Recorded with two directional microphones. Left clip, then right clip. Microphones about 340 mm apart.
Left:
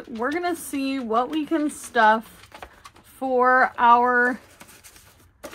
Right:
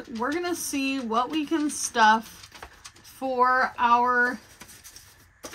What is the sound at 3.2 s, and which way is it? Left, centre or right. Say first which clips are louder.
A woman's voice: left 4 dB; centre.